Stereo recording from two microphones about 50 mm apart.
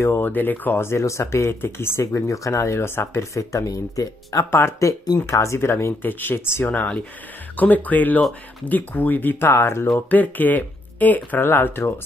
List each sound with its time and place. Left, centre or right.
0.0 s speech: left
0.3 s speech: left
0.8 s speech: left
1.6 s speech: left
3.2 s speech: left
4.5 s speech: left
4.7 s speech: left
5.6 s speech: left
6.0 s speech: left
6.7 s speech: left
9.5 s speech: left
10.0 s speech: left
11.4 s speech: left